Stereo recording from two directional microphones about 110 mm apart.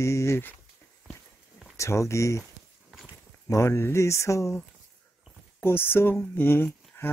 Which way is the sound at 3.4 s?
25° left (ahead or behind).